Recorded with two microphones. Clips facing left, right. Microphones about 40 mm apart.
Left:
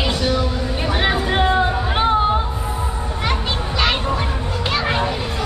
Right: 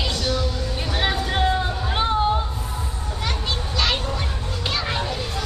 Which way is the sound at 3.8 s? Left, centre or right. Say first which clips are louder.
Left 5 dB; left.